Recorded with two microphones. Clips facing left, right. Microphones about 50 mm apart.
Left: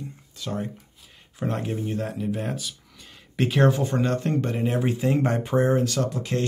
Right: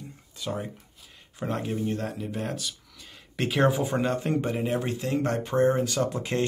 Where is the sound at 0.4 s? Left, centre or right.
Centre.